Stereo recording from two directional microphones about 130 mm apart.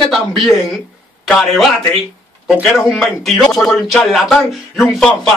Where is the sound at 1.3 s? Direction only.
5° left (ahead or behind).